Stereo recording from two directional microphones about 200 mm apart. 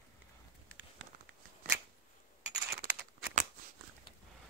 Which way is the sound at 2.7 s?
50° right (ahead or behind).